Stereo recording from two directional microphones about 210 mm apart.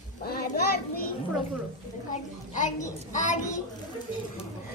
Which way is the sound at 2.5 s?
35° left (ahead or behind).